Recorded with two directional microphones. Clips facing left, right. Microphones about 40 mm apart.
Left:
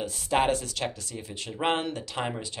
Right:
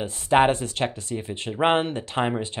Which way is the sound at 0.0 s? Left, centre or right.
Right.